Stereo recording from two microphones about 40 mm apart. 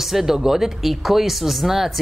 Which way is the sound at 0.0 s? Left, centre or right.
Centre.